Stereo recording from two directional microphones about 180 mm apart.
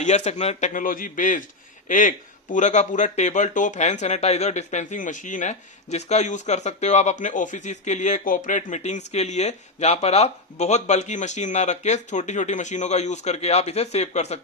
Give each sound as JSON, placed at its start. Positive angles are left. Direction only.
{"t": 0.0, "sound": "a man's voice", "side_deg": 40}